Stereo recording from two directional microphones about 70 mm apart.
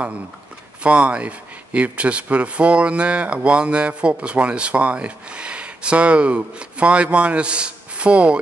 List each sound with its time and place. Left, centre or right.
0.8 s speech: centre